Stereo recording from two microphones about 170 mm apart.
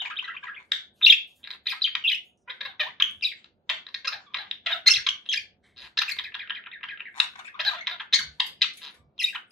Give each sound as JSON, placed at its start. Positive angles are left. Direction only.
{"t": 0.1, "sound": "bird", "side_deg": 0}